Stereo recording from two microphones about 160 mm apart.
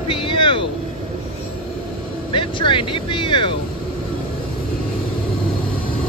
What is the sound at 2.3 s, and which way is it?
Speech, 30° left (ahead or behind).